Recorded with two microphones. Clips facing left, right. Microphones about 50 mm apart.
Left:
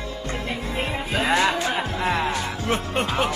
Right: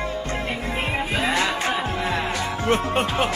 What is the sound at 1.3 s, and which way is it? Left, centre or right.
Music, centre.